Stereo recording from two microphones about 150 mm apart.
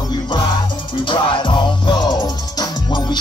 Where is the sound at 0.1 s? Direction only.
30° left (ahead or behind).